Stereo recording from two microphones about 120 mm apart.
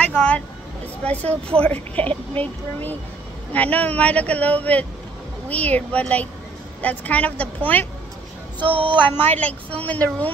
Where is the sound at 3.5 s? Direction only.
15° left (ahead or behind).